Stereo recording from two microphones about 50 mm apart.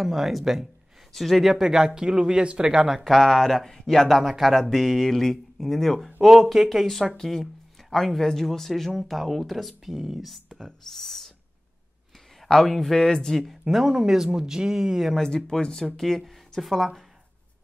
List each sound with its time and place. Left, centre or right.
0.0 s speech: centre
3.0 s speech: centre
12.4 s speech: centre
13.7 s speech: centre
15.1 s speech: centre